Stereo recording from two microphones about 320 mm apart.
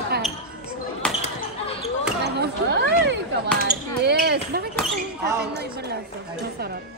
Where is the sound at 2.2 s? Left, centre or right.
Right.